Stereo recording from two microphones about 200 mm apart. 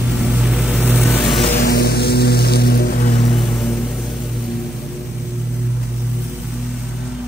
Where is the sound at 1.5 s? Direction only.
50° left (ahead or behind).